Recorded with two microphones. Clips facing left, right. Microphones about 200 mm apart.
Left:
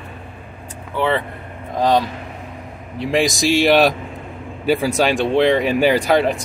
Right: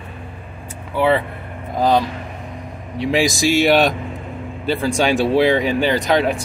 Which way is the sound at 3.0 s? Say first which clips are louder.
Right 1 dB; centre (ahead or behind).